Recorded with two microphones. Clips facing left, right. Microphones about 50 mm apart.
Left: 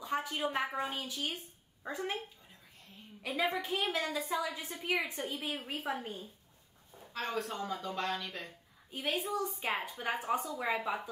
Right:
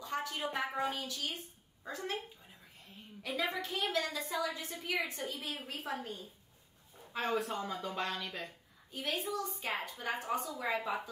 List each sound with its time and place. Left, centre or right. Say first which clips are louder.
0.0 s a sound: left 3 dB; centre
0.7 s a woman's voice: right 1 dB; centre
3.2 s a woman's voice: left 3 dB; centre
3.5 s a woman's voice: left 3 dB; left
3.8 s a woman's voice: left 1 dB; centre
7.1 s speech: right 2 dB; centre
8.9 s a woman's voice: left 2 dB; centre